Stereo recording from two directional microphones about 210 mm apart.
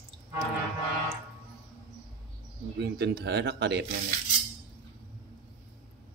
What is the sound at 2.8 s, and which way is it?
Speech, 50° right (ahead or behind).